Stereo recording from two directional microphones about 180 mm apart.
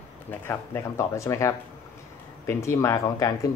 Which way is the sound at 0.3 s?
15° left (ahead or behind).